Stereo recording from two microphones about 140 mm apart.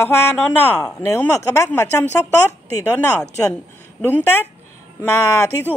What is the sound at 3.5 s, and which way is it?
A woman's voice, 10° left (ahead or behind).